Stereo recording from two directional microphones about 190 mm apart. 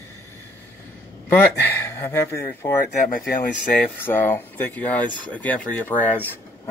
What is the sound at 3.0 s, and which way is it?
Speech, 50° left (ahead or behind).